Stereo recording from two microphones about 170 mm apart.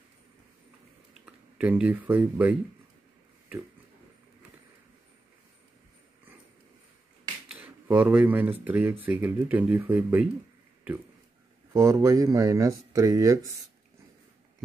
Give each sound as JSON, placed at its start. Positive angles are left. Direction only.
{"t": 1.2, "sound": "speech", "side_deg": -10}
{"t": 7.4, "sound": "speech", "side_deg": -10}
{"t": 11.7, "sound": "speech", "side_deg": -15}